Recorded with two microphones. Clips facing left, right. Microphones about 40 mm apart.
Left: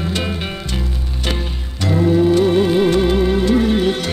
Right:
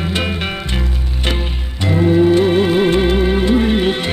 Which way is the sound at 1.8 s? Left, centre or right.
Right.